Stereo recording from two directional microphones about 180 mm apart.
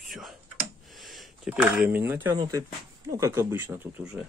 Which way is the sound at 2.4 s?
20° right (ahead or behind).